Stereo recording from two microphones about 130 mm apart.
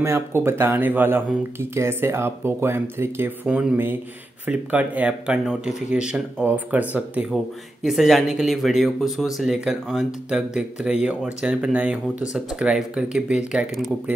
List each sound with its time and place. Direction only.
0.0 s speech: 20° right (ahead or behind)
7.8 s speech: centre (ahead or behind)